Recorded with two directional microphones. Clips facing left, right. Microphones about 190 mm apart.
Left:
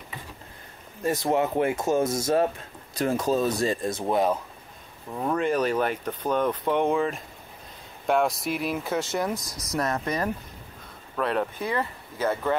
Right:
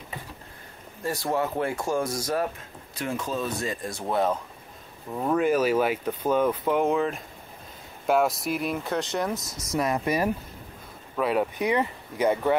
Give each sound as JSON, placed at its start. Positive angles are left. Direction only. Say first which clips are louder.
{"t": 1.0, "sound": "speech", "louder": "left 3 dB", "side_deg": 20}
{"t": 2.9, "sound": "speech", "louder": "left 6 dB", "side_deg": 40}
{"t": 4.0, "sound": "speech", "louder": "even", "side_deg": 15}
{"t": 5.1, "sound": "speech", "louder": "right 2 dB", "side_deg": 0}
{"t": 9.3, "sound": "speech", "louder": "even", "side_deg": -25}
{"t": 9.8, "sound": "speech", "louder": "right 2 dB", "side_deg": -10}